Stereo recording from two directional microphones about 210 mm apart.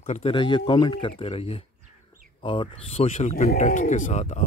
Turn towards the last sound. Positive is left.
turn(degrees=35)  # may be behind; listen again after turning